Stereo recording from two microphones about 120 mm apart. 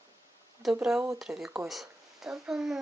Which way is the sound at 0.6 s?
5° right (ahead or behind).